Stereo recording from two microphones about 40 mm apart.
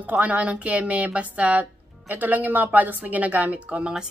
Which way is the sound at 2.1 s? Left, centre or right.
Right.